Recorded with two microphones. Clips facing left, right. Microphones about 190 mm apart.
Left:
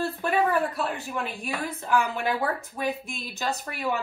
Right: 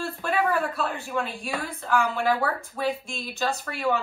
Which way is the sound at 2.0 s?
20° left (ahead or behind).